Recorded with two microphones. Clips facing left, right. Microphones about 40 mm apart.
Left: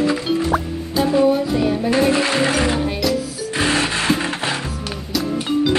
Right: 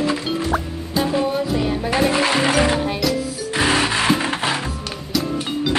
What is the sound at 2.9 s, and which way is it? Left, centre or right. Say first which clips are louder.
Music: left 1 dB; centre.